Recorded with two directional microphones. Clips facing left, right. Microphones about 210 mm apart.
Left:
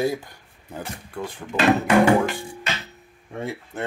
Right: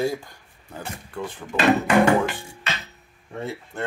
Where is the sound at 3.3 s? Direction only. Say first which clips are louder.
Left 1 dB; 15° left (ahead or behind).